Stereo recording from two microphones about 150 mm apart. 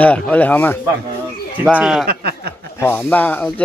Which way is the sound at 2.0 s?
90° right.